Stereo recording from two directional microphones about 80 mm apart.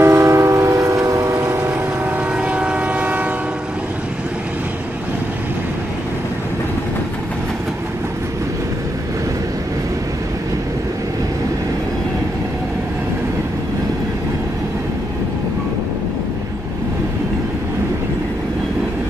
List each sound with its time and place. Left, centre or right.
0.0 s train: right
1.7 s train: centre